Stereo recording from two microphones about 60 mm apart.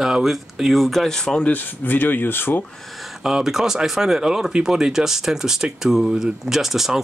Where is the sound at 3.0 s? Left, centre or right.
Centre.